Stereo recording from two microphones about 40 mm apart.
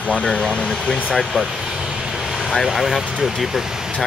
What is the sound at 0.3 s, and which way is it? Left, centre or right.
Speech, left.